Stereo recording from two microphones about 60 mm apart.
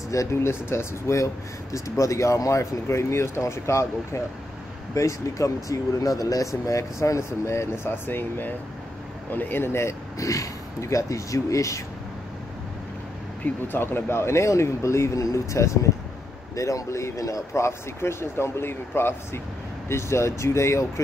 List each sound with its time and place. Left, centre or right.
0.1 s speech: left
0.4 s speech: left
4.9 s speech: left
10.1 s speech: left
13.4 s speech: left